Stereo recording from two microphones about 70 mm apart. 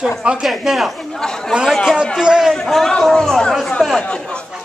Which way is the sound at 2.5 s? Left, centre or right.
Centre.